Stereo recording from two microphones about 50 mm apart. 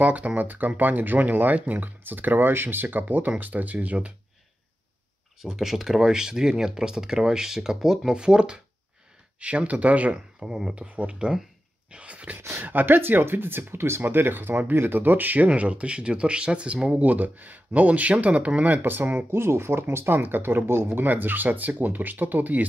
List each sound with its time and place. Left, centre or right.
0.0 s speech: right
5.4 s speech: centre; by 10.2 s right
10.4 s speech: centre
12.4 s speech: right
17.0 s speech: right
19.3 s speech: right
20.2 s speech: right